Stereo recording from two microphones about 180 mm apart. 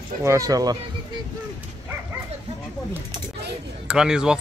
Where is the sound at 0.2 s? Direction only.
15° right (ahead or behind).